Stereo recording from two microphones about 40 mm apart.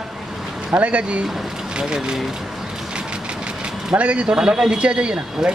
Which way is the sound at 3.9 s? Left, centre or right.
Right.